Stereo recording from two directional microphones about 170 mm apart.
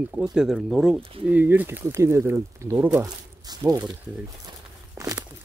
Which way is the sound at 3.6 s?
20° right (ahead or behind).